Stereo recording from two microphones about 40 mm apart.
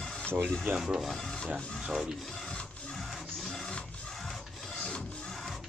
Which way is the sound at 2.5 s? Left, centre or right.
Left.